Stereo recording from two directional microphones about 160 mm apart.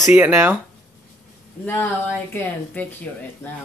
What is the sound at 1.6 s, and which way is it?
Speech, 10° left (ahead or behind).